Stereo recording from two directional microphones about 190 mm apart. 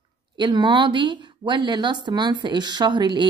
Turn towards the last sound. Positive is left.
turn(degrees=-25)  # may be behind; listen again after turning